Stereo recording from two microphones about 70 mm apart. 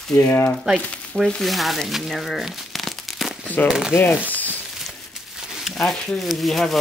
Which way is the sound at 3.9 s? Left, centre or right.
Left.